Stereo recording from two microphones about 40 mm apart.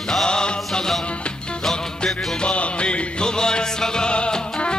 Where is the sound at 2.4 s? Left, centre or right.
Left.